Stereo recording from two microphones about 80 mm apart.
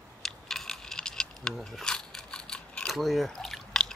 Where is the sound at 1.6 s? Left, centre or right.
Centre.